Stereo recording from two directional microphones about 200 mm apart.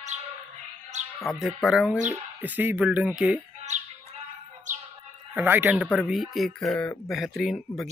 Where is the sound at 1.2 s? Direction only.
Centre (ahead or behind).